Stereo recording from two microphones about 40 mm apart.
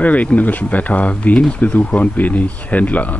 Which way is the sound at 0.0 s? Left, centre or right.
Left.